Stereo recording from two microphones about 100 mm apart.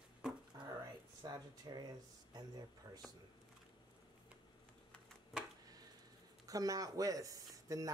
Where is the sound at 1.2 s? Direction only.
40° right (ahead or behind).